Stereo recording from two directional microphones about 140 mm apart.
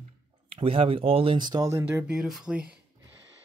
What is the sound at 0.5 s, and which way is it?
Speech, 40° right (ahead or behind).